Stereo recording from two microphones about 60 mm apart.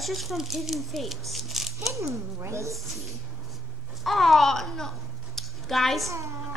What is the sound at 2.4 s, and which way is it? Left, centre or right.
Speech, right.